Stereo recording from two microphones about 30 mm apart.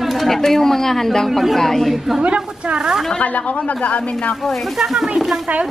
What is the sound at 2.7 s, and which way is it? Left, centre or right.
Speech, centre.